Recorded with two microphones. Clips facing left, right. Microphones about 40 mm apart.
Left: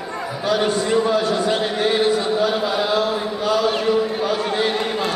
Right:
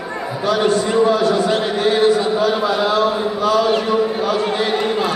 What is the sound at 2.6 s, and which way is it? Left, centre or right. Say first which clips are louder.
Speech: right 3 dB; centre.